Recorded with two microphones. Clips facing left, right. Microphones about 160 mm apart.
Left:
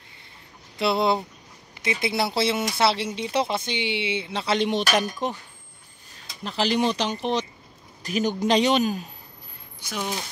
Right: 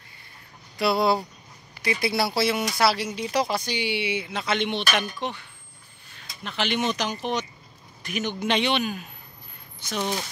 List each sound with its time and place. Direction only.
0.7 s a man's voice: 25° left (ahead or behind)
9.8 s speech: 10° left (ahead or behind)